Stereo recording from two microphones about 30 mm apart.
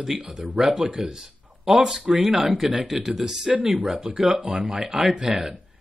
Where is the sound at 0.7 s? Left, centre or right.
Right.